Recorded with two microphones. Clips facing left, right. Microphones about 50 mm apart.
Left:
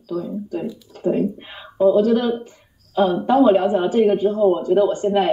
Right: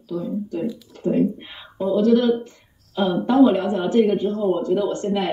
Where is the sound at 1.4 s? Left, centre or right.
Centre.